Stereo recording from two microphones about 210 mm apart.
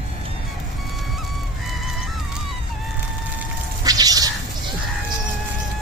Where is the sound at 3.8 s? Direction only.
20° right (ahead or behind).